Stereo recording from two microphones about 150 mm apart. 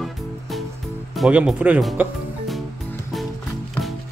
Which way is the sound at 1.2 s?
5° right (ahead or behind).